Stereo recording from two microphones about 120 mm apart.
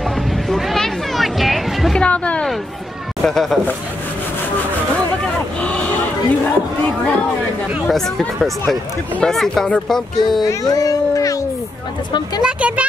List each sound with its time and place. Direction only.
0.0 s a sound: centre (ahead or behind)
3.3 s speech: 5° left (ahead or behind)
5.2 s a sound: 10° left (ahead or behind)
7.9 s speech: 5° left (ahead or behind)
10.5 s speech: 30° left (ahead or behind)
12.4 s speech: 10° right (ahead or behind)